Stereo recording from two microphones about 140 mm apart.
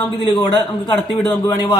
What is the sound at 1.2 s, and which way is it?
Speech, 30° left (ahead or behind).